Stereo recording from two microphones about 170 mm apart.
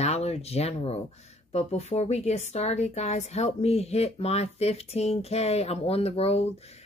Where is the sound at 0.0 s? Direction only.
40° left (ahead or behind).